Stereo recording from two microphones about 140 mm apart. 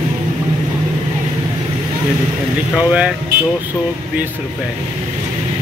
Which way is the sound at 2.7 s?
10° right (ahead or behind).